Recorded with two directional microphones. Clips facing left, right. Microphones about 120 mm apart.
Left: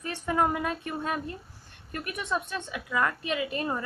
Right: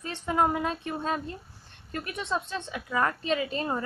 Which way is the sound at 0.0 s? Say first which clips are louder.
Right 1 dB; 20° right (ahead or behind).